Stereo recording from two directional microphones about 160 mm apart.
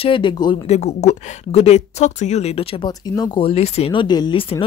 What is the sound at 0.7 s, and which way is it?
A woman's voice, 45° left (ahead or behind).